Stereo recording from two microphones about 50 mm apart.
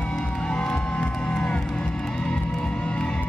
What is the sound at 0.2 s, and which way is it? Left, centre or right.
Music, centre.